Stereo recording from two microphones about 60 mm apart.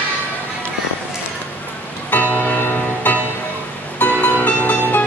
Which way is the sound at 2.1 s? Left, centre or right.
Left.